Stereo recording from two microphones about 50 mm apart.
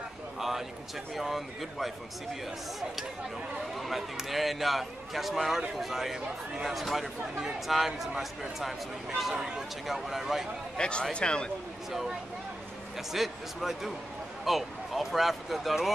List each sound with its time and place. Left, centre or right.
0.4 s a sound: centre
1.1 s speech: centre
3.7 s speech: centre
10.8 s speech: centre
11.9 s speech: centre